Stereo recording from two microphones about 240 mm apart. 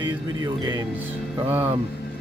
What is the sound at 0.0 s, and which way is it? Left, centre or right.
Speech, centre.